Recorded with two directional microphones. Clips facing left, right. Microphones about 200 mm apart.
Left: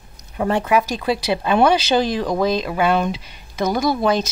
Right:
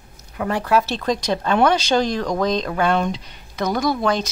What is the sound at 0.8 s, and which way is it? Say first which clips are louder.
Speech: left 1 dB; 10° left (ahead or behind).